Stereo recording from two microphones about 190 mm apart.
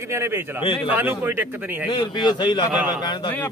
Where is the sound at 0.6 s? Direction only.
25° left (ahead or behind).